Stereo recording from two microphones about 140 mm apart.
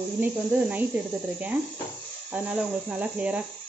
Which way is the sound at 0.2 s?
10° right (ahead or behind).